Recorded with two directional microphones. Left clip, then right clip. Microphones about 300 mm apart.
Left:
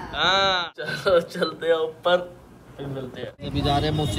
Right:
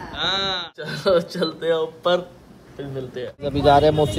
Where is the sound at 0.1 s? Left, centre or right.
Centre.